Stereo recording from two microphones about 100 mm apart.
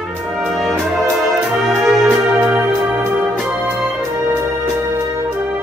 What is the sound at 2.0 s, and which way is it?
Music, 15° right (ahead or behind).